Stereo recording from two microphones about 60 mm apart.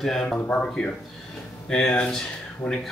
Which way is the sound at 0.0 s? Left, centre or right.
Centre.